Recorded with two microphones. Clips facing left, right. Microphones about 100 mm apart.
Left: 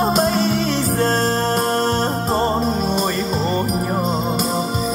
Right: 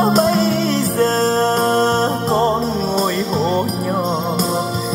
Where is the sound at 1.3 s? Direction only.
35° right (ahead or behind).